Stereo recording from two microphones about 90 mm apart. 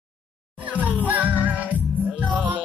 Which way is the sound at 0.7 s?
15° right (ahead or behind).